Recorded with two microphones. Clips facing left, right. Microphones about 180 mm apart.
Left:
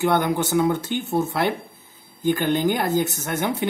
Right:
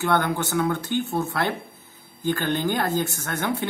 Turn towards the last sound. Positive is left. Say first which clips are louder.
# left 2 dB
turn(degrees=15)  # may be behind; listen again after turning